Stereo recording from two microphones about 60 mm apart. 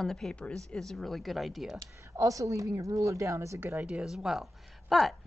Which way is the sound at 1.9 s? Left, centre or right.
Right.